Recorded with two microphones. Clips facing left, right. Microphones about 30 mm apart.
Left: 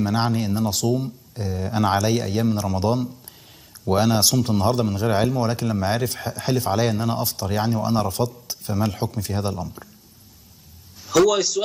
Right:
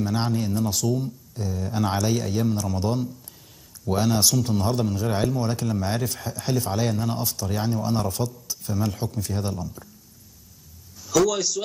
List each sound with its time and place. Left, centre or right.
0.0 s a man's voice: left
11.2 s speech: centre